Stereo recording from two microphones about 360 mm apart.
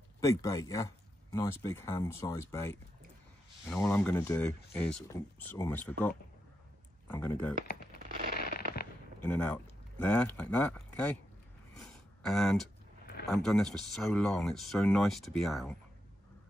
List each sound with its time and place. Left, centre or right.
0.2 s speech: centre
8.1 s fireworks: right
9.2 s speech: centre
11.7 s a sound: centre
13.0 s a sound: left
13.3 s speech: centre